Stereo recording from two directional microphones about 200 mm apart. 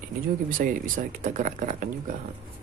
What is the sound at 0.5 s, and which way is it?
Speech, 45° right (ahead or behind).